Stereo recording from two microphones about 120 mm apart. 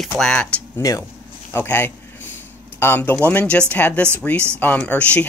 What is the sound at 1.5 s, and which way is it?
Speech, 15° left (ahead or behind).